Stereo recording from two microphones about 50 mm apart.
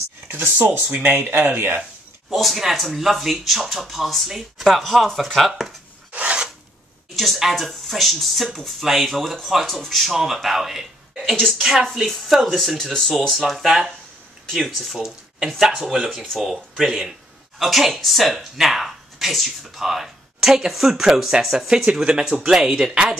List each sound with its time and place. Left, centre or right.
0.6 s speech: right
2.2 s speech: centre
6.1 s filing: right
7.2 s speech: centre
12.1 s speech: centre